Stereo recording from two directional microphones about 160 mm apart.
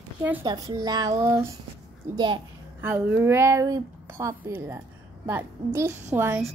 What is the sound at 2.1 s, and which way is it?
Speech, 30° right (ahead or behind).